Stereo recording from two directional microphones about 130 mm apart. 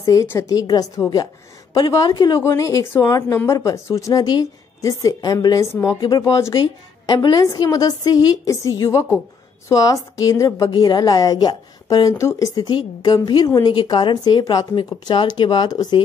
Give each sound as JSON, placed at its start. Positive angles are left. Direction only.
{"t": 0.0, "sound": "a woman's voice", "side_deg": 25}